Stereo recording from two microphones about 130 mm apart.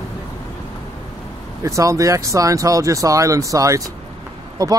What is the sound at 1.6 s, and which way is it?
Speech, 25° right (ahead or behind).